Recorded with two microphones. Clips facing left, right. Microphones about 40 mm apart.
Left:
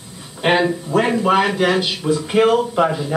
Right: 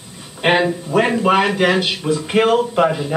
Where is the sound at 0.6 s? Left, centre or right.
Centre.